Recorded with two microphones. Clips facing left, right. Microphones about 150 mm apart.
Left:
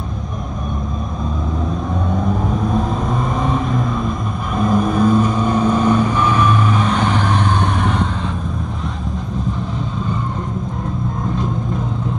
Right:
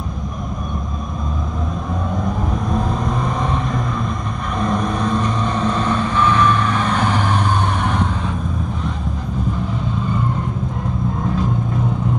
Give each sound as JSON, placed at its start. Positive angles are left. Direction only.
{"t": 2.7, "sound": "vehicle", "side_deg": 0}